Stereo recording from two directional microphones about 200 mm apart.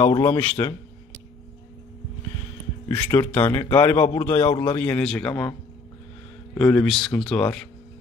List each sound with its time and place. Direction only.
0.0 s a man's voice: 20° left (ahead or behind)
2.9 s a man's voice: 10° left (ahead or behind)